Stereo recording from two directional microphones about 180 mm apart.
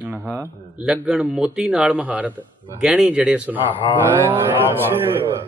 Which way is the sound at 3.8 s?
25° left (ahead or behind).